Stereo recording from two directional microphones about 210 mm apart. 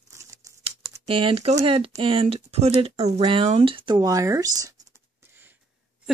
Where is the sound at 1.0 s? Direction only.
25° right (ahead or behind).